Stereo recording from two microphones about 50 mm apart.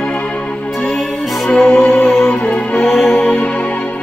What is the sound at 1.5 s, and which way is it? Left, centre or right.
Music, centre.